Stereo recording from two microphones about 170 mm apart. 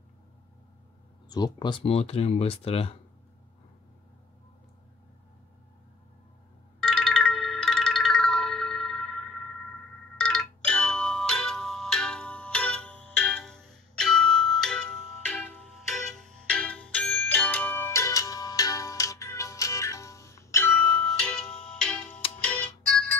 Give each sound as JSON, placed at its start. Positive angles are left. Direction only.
{"t": 1.3, "sound": "speech", "side_deg": 25}
{"t": 6.8, "sound": "music", "side_deg": 0}